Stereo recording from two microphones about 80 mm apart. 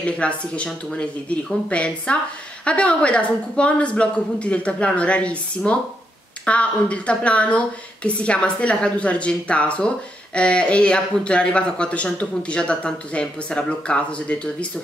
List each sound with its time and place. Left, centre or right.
0.0 s speech: centre
1.3 s speech: centre